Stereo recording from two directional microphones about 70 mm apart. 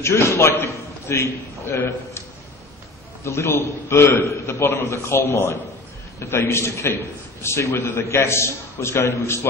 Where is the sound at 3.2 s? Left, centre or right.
Left.